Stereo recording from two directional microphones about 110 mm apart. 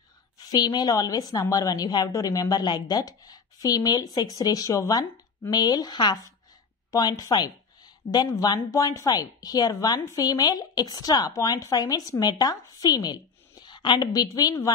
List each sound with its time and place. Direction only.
0.5 s a woman's voice: 40° left (ahead or behind)